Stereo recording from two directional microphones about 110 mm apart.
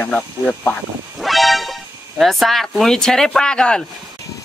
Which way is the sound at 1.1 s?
Centre (ahead or behind).